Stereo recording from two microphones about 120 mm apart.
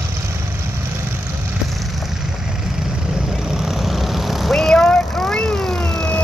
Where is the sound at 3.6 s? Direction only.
Centre (ahead or behind).